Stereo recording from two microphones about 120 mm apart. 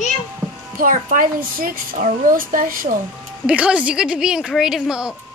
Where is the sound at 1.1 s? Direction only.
90° right.